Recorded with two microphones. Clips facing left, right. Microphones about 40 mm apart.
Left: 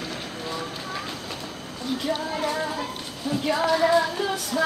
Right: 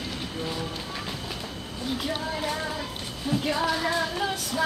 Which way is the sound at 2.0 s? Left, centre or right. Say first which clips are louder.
Left 5 dB; centre.